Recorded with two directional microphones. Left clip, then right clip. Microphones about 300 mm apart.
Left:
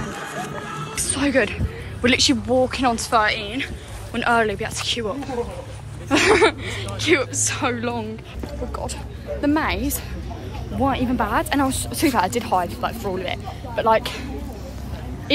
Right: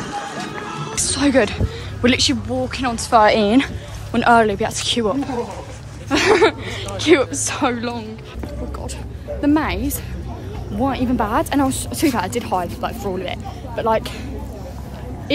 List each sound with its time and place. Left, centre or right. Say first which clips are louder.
0.7 s music: right 3 dB; right
0.9 s speech: right 4 dB; centre
9.4 s speech: right 3 dB; centre